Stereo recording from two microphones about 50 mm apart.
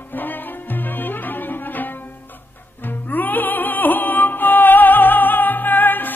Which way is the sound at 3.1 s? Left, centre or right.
Left.